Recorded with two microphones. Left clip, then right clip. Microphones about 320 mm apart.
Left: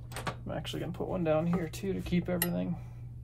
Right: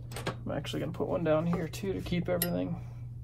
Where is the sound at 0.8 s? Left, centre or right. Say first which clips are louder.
Right 4 dB; centre.